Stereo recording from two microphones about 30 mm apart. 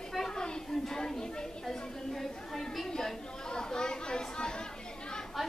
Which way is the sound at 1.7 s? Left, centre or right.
Centre.